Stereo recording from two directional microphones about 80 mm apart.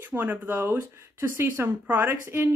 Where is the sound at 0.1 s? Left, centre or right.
Right.